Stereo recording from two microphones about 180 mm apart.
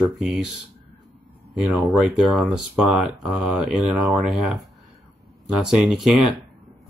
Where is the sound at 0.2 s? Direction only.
Centre (ahead or behind).